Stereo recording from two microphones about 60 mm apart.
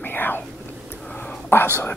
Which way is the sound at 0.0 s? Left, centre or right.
Left.